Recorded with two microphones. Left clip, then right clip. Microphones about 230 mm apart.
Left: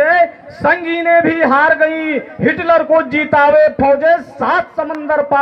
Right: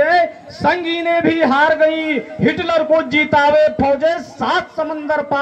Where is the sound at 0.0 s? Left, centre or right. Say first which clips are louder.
Left 2 dB; right.